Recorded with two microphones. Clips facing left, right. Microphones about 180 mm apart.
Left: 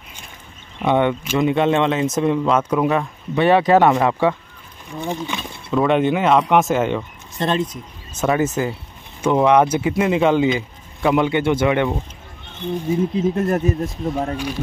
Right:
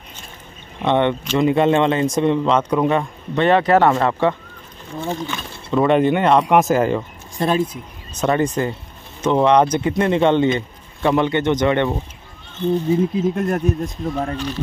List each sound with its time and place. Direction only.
0.8 s speech: 5° left (ahead or behind)
5.7 s speech: centre (ahead or behind)
8.2 s speech: 5° left (ahead or behind)
13.2 s speech: 5° left (ahead or behind)